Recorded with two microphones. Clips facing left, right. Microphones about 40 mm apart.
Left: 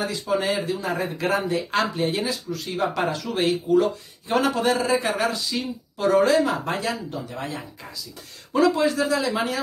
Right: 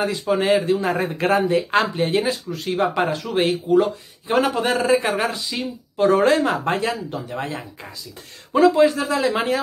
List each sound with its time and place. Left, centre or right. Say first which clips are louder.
0.3 s a man's voice: right 6 dB; right